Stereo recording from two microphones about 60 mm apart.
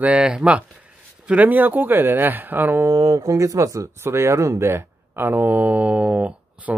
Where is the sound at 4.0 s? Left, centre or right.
Right.